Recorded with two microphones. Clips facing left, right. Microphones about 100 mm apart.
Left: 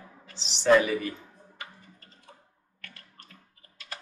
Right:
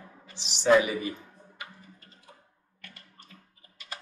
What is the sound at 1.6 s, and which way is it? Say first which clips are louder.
Typing: even; 5° right (ahead or behind).